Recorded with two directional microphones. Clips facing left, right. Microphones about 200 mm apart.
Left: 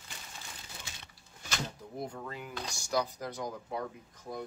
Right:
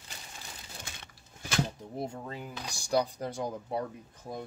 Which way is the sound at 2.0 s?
30° right (ahead or behind).